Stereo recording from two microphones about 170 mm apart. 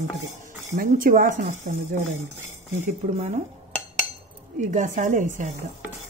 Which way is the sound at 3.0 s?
45° right (ahead or behind).